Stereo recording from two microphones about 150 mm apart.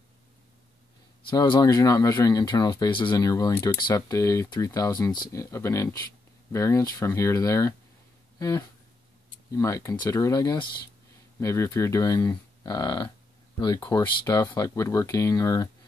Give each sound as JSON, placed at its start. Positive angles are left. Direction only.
{"t": 1.3, "sound": "speech", "side_deg": 25}